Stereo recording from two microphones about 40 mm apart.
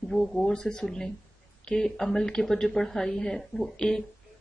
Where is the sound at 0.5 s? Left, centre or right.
Left.